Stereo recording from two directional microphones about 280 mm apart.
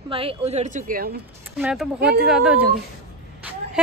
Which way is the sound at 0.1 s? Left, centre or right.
Centre.